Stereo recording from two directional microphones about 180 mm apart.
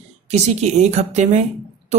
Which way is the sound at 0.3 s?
40° right (ahead or behind).